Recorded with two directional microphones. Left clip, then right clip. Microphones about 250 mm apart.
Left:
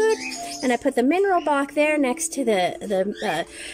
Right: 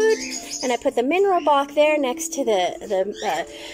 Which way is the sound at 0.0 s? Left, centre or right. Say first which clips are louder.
Right 1 dB; centre.